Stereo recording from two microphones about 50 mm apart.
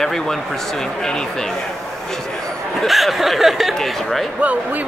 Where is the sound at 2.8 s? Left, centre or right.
Centre.